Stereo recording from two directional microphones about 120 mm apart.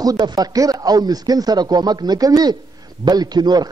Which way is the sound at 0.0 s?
35° right (ahead or behind).